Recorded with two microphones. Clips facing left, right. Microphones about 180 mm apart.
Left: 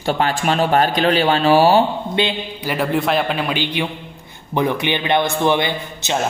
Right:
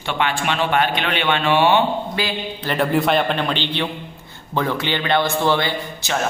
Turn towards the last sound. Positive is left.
turn(degrees=20)  # may be behind; listen again after turning